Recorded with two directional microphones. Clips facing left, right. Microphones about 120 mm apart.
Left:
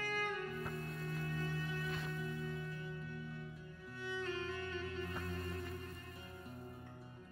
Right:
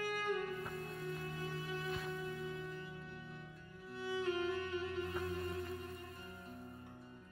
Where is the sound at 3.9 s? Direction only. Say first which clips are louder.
Right 4 dB; 15° right (ahead or behind).